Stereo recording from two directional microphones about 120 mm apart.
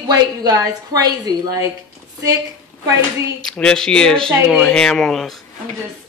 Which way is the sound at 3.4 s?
5° left (ahead or behind).